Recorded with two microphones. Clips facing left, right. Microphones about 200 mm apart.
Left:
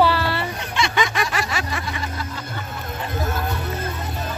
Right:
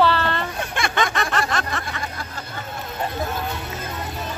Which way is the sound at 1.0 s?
55° right (ahead or behind).